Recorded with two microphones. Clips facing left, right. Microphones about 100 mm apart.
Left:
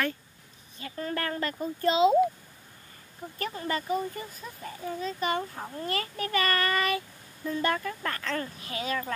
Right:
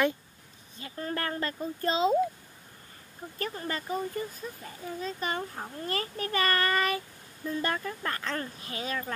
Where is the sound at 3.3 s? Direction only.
35° right (ahead or behind).